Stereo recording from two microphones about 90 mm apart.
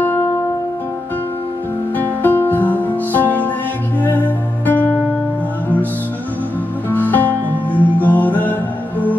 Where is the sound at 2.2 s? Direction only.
20° left (ahead or behind).